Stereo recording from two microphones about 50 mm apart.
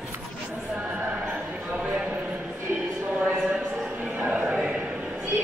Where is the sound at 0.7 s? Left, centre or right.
Centre.